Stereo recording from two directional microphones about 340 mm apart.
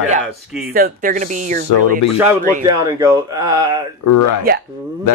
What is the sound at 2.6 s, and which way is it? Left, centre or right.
Speech, centre.